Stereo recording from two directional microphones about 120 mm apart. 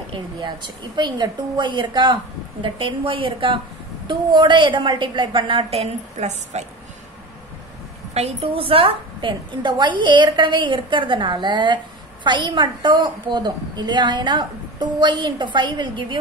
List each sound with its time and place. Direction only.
0.9 s a woman's voice: 35° right (ahead or behind); by 6.6 s 70° right (ahead or behind)
8.1 s a woman's voice: 65° right (ahead or behind); by 16.2 s 40° right (ahead or behind)